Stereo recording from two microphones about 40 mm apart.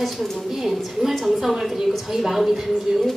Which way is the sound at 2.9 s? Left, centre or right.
Centre.